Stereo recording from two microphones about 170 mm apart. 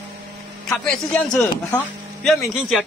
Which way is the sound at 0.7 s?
5° left (ahead or behind).